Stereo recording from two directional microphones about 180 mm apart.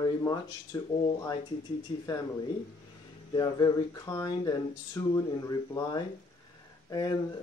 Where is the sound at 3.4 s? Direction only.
20° left (ahead or behind).